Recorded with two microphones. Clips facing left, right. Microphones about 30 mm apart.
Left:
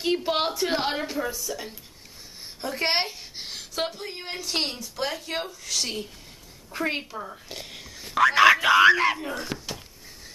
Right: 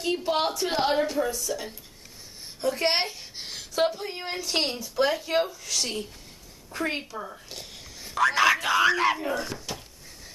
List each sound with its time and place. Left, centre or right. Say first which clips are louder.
0.0 s a woman's voice: left 1 dB; left
7.7 s whispering: left 5 dB; left
8.3 s speech: left 5 dB; centre
9.0 s a woman's voice: even; centre